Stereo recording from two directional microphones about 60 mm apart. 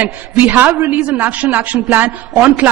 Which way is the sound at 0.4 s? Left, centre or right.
Right.